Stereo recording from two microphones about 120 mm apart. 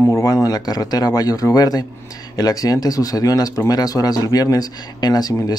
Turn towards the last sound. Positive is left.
turn(degrees=35)  # may be behind; listen again after turning